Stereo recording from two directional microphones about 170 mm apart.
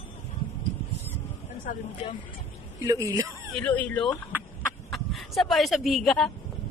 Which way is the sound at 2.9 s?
20° right (ahead or behind).